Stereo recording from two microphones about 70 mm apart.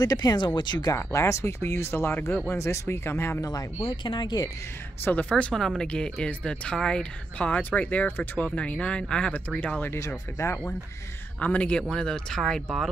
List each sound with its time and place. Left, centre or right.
0.0 s speech: left
0.6 s speech: left
0.9 s speech: left
3.3 s speech: left
3.9 s speech: left
5.0 s speech: left
5.4 s speech: centre
9.6 s speech: left
9.9 s speech: left
11.3 s speech: centre